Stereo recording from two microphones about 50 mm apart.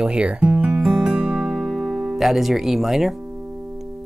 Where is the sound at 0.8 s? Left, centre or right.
Centre.